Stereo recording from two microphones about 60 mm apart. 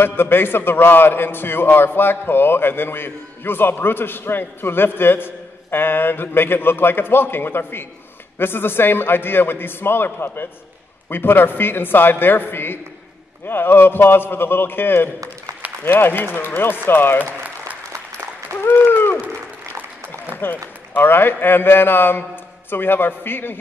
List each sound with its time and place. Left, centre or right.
0.0 s a man's voice: left
18.6 s a sound: left
20.4 s a man's voice: left